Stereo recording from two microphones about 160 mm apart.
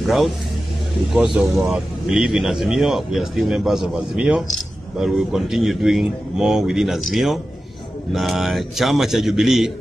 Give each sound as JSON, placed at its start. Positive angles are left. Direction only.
{"t": 0.0, "sound": "speech", "side_deg": 0}